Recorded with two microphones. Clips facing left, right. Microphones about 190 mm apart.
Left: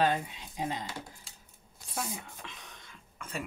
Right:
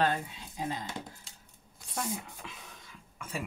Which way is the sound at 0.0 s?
20° left (ahead or behind).